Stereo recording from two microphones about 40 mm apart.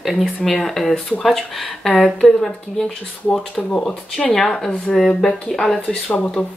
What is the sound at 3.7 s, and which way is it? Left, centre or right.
Speech, centre.